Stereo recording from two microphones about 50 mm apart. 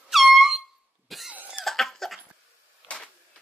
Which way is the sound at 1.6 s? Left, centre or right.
Centre.